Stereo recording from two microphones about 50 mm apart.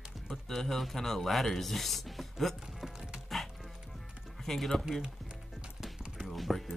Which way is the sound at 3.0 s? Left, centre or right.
Centre.